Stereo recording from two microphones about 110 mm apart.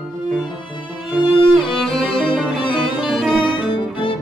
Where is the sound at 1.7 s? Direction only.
Centre (ahead or behind).